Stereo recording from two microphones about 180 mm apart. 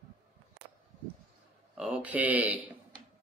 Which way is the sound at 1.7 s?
5° right (ahead or behind).